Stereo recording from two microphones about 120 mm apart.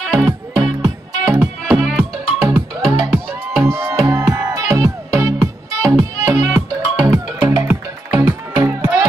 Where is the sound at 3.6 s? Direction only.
25° right (ahead or behind).